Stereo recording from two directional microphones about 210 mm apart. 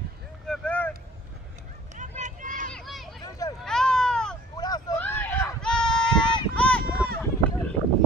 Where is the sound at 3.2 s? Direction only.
15° left (ahead or behind).